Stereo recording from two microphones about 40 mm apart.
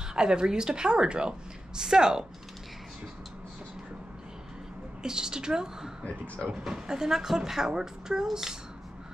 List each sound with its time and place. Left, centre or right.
0.1 s a woman's voice: centre
5.0 s a woman's voice: centre